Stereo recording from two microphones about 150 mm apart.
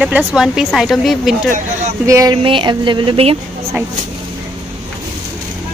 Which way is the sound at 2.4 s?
35° right (ahead or behind).